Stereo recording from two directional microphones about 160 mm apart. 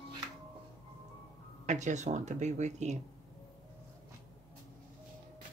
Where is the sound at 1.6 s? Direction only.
50° right (ahead or behind).